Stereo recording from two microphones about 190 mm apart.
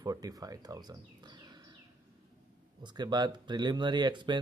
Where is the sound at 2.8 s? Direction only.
20° right (ahead or behind).